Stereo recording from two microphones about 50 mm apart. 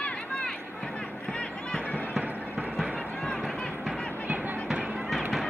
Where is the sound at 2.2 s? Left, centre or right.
Right.